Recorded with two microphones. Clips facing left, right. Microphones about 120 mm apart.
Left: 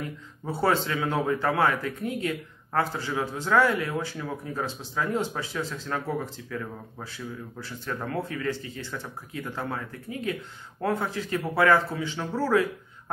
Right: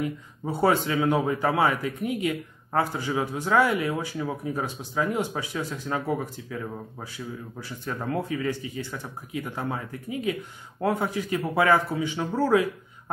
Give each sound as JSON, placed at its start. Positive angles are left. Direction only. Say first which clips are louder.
{"t": 0.5, "sound": "a man's voice", "louder": "right 2 dB", "side_deg": -15}